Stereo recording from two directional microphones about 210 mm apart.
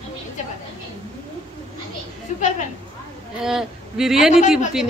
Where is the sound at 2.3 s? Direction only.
35° left (ahead or behind).